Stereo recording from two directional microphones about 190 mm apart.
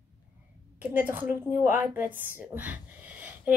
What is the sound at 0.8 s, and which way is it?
A woman's voice, 10° right (ahead or behind).